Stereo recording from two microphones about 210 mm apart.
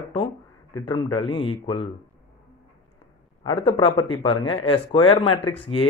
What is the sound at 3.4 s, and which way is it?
Speech, 25° left (ahead or behind).